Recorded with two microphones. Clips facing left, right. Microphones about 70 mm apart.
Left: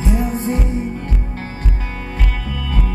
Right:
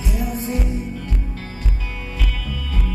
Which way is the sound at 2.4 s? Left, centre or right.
Left.